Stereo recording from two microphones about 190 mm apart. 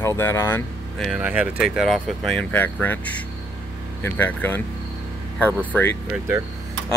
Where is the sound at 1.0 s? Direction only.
5° right (ahead or behind); by 4.6 s 10° left (ahead or behind).